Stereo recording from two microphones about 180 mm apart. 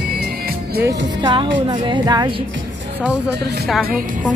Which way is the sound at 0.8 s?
25° right (ahead or behind).